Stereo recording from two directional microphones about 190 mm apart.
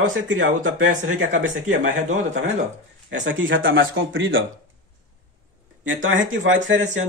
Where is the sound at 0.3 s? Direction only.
85° right.